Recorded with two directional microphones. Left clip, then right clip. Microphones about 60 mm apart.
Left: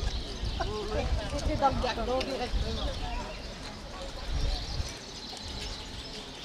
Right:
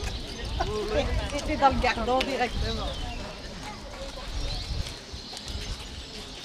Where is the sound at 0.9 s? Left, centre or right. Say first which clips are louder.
Right 5 dB; right.